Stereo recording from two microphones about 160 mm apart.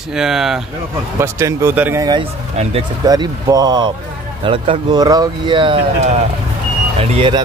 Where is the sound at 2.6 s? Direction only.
45° right (ahead or behind).